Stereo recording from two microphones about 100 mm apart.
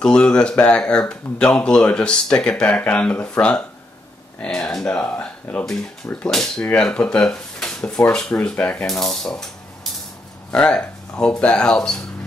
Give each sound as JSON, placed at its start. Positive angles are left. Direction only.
{"t": 0.0, "sound": "speech", "side_deg": 10}
{"t": 5.2, "sound": "a sound", "side_deg": 15}
{"t": 6.0, "sound": "speech", "side_deg": 10}
{"t": 10.5, "sound": "speech", "side_deg": 10}